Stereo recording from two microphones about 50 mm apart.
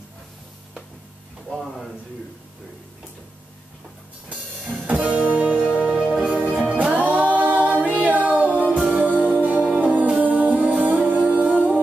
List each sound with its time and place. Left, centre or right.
1.5 s a sound: centre
4.6 s music: centre
4.8 s music: right